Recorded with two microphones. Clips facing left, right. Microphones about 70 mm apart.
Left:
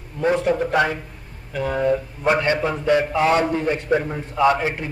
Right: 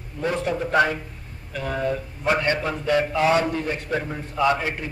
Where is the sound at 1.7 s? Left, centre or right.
Left.